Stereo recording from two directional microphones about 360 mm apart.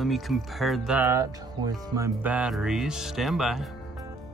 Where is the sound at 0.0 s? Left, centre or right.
Centre.